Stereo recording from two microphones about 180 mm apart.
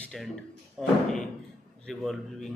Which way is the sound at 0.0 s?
5° left (ahead or behind).